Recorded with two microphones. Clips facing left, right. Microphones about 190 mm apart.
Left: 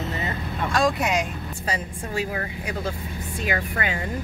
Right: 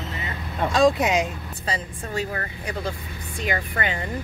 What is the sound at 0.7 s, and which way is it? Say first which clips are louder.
Speech: right 4 dB; 20° right (ahead or behind).